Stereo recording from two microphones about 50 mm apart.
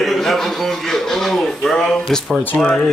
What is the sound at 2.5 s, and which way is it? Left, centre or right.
Speech, left.